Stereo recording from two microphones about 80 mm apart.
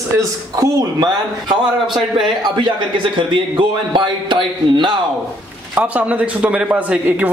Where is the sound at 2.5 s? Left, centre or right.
Right.